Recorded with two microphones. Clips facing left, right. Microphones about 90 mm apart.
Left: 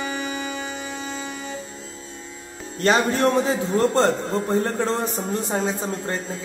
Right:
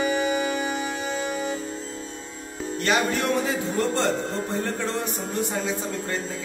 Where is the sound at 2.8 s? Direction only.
30° left (ahead or behind).